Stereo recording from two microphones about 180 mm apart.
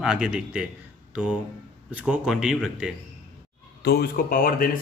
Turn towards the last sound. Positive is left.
turn(degrees=50)  # may be behind; listen again after turning